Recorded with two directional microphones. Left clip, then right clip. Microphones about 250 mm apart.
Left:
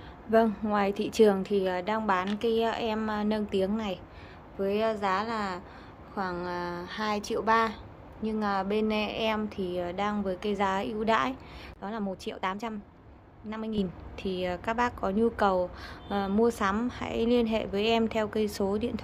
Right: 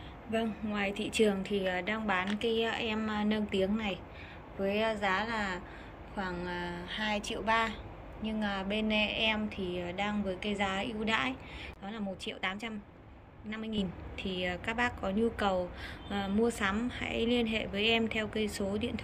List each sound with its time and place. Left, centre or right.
0.3 s a woman's voice: centre